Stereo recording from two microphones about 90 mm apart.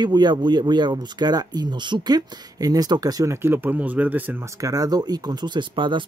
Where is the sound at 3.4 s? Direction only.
25° right (ahead or behind).